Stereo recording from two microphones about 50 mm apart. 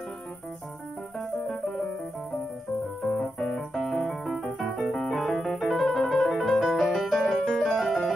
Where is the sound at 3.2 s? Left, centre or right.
Centre.